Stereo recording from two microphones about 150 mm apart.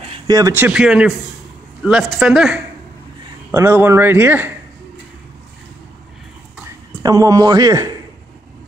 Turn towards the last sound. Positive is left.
turn(degrees=-25)  # may be behind; listen again after turning